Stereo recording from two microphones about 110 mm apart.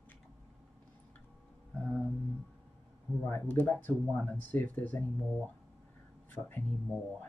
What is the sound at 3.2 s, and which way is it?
Speech, 15° left (ahead or behind).